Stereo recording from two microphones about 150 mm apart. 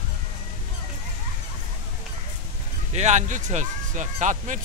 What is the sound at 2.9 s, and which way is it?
Speech, 50° right (ahead or behind).